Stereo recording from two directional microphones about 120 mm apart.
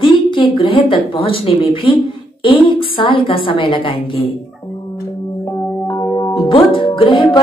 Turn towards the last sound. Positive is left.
turn(degrees=45)  # may be behind; listen again after turning